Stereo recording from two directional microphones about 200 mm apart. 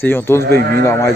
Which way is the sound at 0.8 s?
15° left (ahead or behind).